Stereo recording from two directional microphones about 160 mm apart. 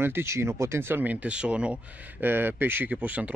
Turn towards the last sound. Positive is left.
turn(degrees=-10)  # may be behind; listen again after turning